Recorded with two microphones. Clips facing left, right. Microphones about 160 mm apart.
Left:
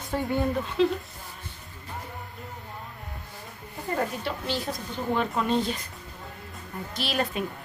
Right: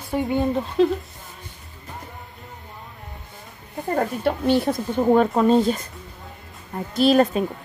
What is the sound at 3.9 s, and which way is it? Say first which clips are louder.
Speech: right 7 dB; 55° right (ahead or behind).